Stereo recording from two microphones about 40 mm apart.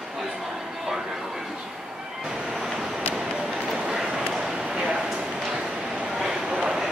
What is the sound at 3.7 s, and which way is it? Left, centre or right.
Train, centre.